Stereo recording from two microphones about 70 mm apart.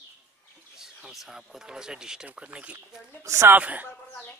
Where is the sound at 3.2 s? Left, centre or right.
Right.